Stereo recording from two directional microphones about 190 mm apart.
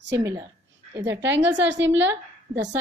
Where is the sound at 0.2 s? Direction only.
15° right (ahead or behind).